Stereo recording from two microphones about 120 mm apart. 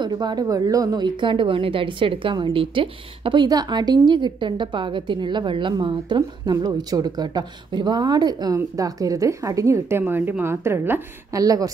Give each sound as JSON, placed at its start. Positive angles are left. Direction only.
{"t": 0.0, "sound": "a woman's voice", "side_deg": -35}
{"t": 3.4, "sound": "a woman's voice", "side_deg": -35}